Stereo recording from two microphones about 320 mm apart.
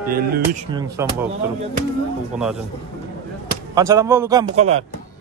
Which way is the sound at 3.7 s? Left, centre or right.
Centre.